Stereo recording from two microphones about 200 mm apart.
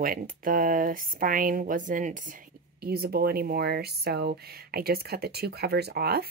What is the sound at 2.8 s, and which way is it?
Speech, 50° right (ahead or behind).